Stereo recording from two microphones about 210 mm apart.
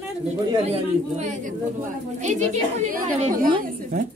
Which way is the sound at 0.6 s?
30° right (ahead or behind).